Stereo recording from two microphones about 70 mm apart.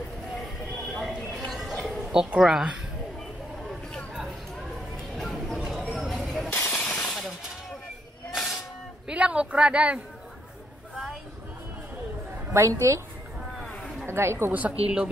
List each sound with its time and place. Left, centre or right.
0.9 s a sound: centre
2.4 s speech: centre
5.1 s a sound: centre
6.7 s shatter: centre
7.1 s shatter: centre
8.3 s hiss: centre
9.0 s a man's voice: centre
12.6 s a woman's voice: right
14.0 s a woman's voice: right
14.5 s a woman's voice: centre